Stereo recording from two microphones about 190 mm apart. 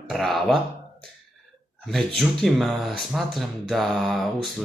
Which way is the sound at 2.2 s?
Centre (ahead or behind).